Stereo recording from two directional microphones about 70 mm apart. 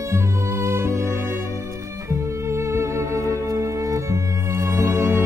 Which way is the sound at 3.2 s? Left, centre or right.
Left.